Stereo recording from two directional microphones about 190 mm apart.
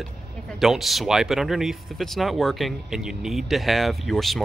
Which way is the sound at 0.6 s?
Centre (ahead or behind).